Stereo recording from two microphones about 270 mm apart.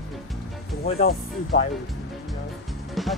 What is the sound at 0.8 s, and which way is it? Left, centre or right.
Speech, left.